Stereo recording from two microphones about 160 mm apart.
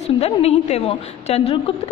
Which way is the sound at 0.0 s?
40° left (ahead or behind).